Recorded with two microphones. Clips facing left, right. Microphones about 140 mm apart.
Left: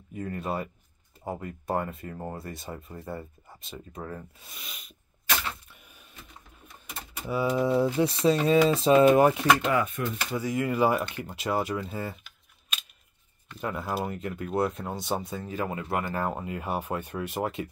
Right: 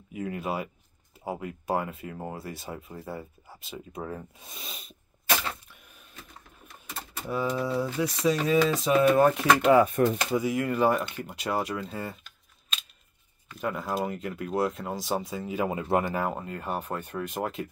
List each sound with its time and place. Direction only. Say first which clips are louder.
0.1 s speech: right 1 dB; 10° right (ahead or behind)
4.5 s rub: right 3 dB; 25° right (ahead or behind)
7.4 s speech: left 6 dB; 20° left (ahead or behind)
9.3 s speech: even; centre (ahead or behind)
9.7 s speech: right 7 dB; 40° right (ahead or behind)
10.3 s speech: right 2 dB; 5° right (ahead or behind)
13.5 s speech: right 1 dB; centre (ahead or behind); by 16.2 s 20° right (ahead or behind)
16.2 s speech: even; centre (ahead or behind)